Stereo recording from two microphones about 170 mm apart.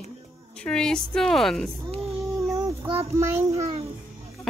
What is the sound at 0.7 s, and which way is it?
Speech, 5° left (ahead or behind).